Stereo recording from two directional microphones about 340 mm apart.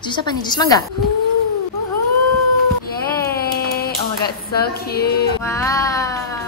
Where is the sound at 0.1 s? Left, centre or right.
Centre.